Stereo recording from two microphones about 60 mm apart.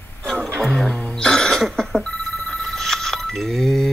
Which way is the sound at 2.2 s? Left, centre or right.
Centre.